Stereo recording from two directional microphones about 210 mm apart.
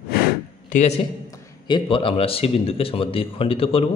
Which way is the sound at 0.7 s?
35° left (ahead or behind).